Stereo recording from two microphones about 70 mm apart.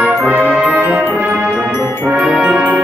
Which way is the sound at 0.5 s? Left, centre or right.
Centre.